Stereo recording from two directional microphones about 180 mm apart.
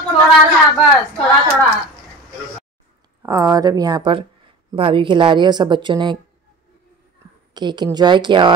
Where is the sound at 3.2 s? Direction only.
20° right (ahead or behind).